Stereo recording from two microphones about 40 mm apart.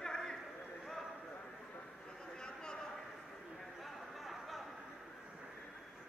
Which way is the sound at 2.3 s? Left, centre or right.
Centre.